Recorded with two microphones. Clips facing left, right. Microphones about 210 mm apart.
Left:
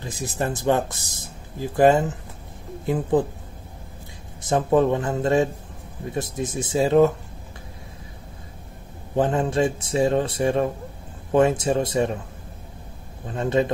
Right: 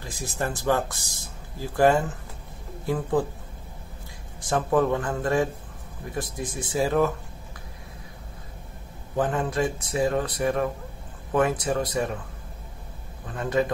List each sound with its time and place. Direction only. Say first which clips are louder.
0.0 s speech: left 3 dB; 20° left (ahead or behind)
4.4 s speech: left 4 dB; 25° left (ahead or behind)
9.1 s speech: left 4 dB; 25° left (ahead or behind)
13.3 s speech: left 3 dB; 25° left (ahead or behind)